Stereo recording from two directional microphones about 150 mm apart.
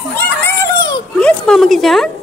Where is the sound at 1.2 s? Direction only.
5° left (ahead or behind).